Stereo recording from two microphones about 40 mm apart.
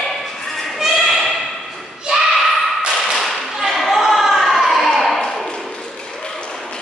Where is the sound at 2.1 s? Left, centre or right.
Right.